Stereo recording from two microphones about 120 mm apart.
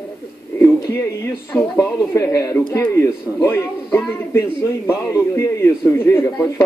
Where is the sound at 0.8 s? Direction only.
20° left (ahead or behind).